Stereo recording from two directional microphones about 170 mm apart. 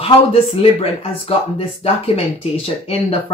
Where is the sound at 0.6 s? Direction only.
35° left (ahead or behind).